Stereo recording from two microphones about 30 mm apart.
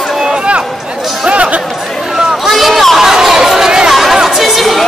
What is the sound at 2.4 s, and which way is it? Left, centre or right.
Speech, centre.